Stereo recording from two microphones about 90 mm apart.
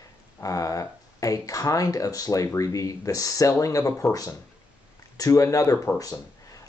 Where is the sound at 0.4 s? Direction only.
40° left (ahead or behind).